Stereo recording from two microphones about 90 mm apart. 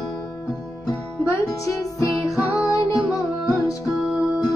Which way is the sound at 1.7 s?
35° left (ahead or behind).